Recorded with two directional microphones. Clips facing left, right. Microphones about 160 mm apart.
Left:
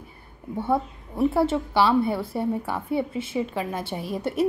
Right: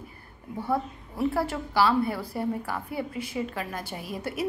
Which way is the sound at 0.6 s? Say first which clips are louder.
Left 4 dB; 25° left (ahead or behind).